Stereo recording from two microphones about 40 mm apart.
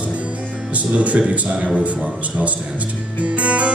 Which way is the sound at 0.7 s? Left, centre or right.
Right.